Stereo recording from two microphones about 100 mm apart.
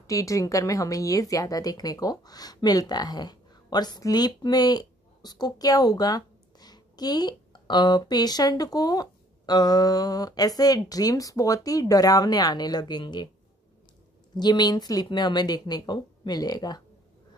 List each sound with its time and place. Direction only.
0.0 s speech: 30° left (ahead or behind)
14.3 s speech: 45° left (ahead or behind)